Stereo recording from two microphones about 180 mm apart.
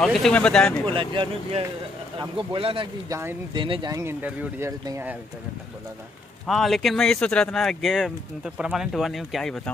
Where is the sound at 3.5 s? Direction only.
25° right (ahead or behind).